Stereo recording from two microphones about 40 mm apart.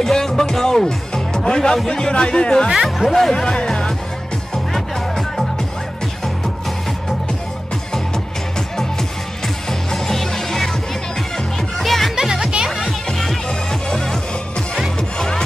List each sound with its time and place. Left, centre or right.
0.0 s speech: centre
2.7 s speech: centre
3.1 s speech: centre
4.7 s music: centre
9.7 s music: centre
12.2 s music: centre
12.8 s music: centre
13.5 s music: centre